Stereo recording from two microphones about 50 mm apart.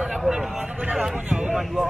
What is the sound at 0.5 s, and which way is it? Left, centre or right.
Speech, right.